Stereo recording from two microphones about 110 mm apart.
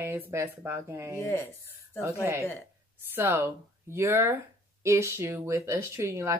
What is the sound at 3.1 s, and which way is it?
Speech, 20° right (ahead or behind).